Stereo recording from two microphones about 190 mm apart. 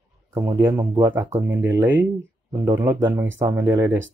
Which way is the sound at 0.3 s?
15° right (ahead or behind).